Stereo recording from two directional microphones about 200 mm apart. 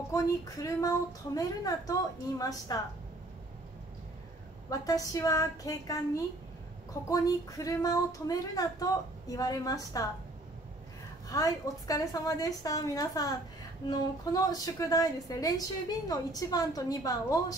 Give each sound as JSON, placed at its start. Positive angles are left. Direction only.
{"t": 0.1, "sound": "speech", "side_deg": 15}
{"t": 4.6, "sound": "speech", "side_deg": 15}
{"t": 11.2, "sound": "speech", "side_deg": 15}